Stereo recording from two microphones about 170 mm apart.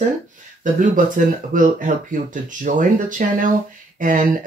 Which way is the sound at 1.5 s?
50° right (ahead or behind).